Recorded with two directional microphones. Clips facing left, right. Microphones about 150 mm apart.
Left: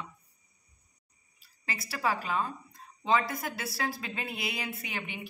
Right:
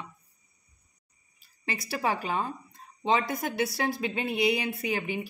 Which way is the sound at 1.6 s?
25° right (ahead or behind).